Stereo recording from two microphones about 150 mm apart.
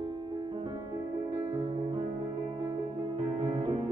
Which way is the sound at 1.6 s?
40° right (ahead or behind).